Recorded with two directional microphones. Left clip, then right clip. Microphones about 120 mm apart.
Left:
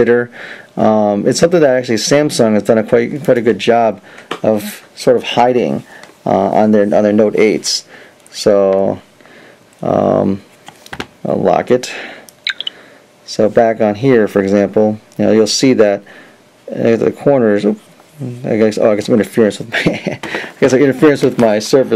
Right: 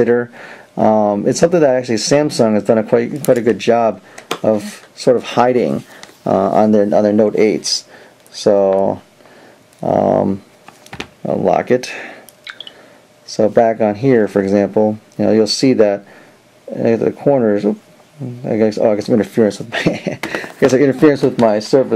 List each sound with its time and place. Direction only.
0.0 s speech: 25° left (ahead or behind)
13.3 s speech: 20° left (ahead or behind)